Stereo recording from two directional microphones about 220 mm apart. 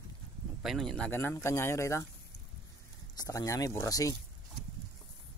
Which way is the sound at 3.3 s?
15° left (ahead or behind).